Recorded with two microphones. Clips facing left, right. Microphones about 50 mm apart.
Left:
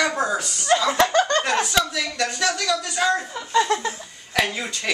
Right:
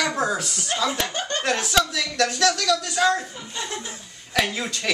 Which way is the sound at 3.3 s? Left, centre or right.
Left.